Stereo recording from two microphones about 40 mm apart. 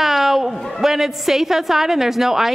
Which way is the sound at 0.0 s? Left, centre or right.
Centre.